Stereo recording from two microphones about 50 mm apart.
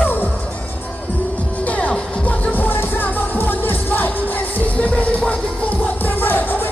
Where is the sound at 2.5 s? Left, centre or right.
Left.